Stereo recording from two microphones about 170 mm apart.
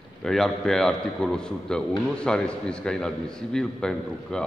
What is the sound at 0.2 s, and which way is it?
A man's voice, centre (ahead or behind).